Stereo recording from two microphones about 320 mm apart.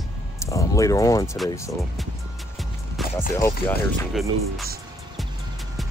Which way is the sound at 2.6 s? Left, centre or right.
Centre.